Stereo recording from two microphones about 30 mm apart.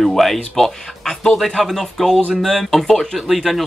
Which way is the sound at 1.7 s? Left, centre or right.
Centre.